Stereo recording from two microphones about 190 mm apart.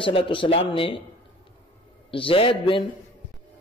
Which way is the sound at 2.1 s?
30° left (ahead or behind).